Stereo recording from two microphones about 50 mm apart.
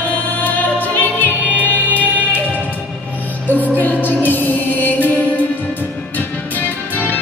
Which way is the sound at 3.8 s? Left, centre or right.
Left.